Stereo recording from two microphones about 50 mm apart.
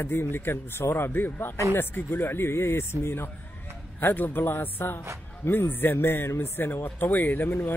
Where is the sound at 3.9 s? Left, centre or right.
Left.